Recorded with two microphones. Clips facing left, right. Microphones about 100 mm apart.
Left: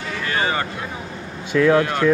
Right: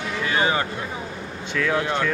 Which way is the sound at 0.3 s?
10° right (ahead or behind).